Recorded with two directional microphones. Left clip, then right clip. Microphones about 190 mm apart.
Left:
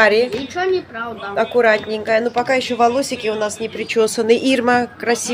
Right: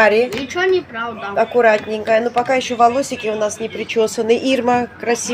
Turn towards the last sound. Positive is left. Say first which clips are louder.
# left 1 dB
turn(degrees=10)  # may be behind; listen again after turning